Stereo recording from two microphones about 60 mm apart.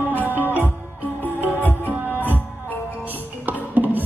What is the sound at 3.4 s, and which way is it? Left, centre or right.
Music, right.